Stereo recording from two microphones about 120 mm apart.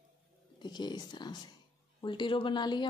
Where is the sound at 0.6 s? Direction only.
35° left (ahead or behind).